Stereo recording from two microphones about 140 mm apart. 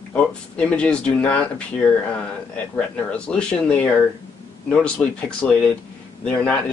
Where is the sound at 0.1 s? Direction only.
10° left (ahead or behind).